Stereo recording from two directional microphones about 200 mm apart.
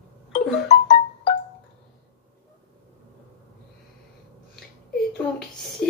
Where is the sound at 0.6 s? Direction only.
35° left (ahead or behind).